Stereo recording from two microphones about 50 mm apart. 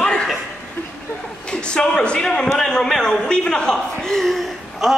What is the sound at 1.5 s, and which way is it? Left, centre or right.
A man's voice, centre.